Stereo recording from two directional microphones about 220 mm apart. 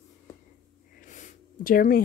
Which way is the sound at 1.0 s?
35° left (ahead or behind).